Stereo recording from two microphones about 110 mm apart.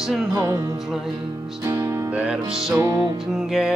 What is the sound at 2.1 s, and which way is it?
Music, 10° right (ahead or behind).